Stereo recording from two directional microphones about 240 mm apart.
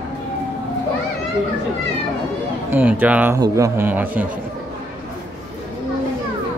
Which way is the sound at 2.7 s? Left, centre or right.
Centre.